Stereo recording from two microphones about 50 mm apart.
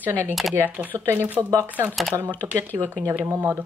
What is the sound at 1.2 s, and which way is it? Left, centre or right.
Speech, right.